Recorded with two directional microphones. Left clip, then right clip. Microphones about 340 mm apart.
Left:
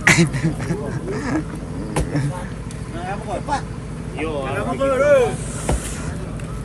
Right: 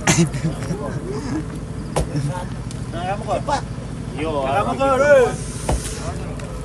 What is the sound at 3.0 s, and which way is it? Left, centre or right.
Speech, centre.